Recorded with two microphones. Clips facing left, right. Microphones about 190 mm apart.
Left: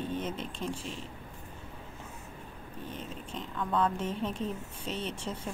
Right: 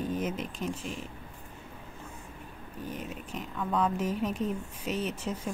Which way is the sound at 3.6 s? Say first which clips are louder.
Even; 10° right (ahead or behind).